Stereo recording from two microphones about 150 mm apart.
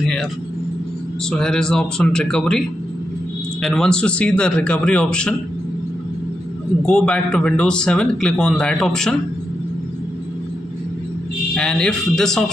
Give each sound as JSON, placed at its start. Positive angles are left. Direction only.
{"t": 0.0, "sound": "speech", "side_deg": 5}
{"t": 1.3, "sound": "speech", "side_deg": 5}
{"t": 3.6, "sound": "speech", "side_deg": 5}
{"t": 6.9, "sound": "speech", "side_deg": 5}
{"t": 11.5, "sound": "speech", "side_deg": 5}